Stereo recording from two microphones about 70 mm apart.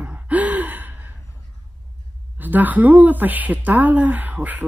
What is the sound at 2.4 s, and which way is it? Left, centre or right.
Speech, right.